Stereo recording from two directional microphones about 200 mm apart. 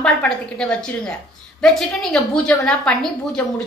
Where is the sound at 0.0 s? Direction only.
5° left (ahead or behind).